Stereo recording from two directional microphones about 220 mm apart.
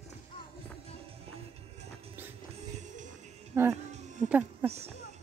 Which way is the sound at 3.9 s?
30° right (ahead or behind).